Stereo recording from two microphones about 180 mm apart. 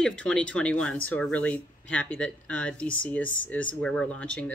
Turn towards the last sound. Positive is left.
turn(degrees=5)  # may be behind; listen again after turning